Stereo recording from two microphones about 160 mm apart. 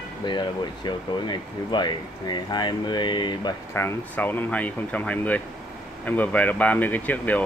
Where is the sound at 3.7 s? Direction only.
15° left (ahead or behind).